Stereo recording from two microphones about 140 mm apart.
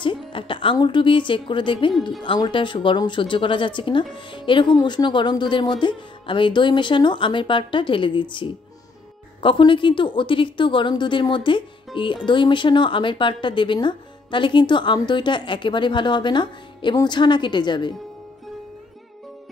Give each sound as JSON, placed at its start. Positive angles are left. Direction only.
{"t": 0.0, "sound": "a woman's voice", "side_deg": 35}